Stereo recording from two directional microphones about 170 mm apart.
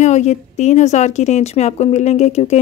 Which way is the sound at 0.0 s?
45° left (ahead or behind).